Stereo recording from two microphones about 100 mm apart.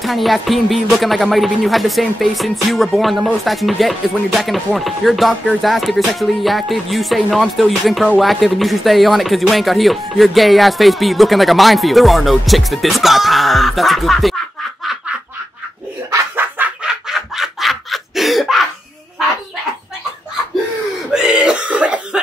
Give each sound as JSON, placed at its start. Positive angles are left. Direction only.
{"t": 0.0, "sound": "speech", "side_deg": 0}
{"t": 16.3, "sound": "chicken", "side_deg": -15}
{"t": 17.1, "sound": "laughter", "side_deg": 0}
{"t": 21.1, "sound": "cough", "side_deg": -5}